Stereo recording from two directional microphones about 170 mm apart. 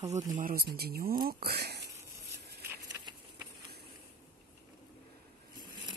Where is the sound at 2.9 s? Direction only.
15° right (ahead or behind).